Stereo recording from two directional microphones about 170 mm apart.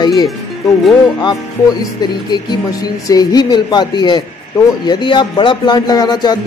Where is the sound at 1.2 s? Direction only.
25° left (ahead or behind).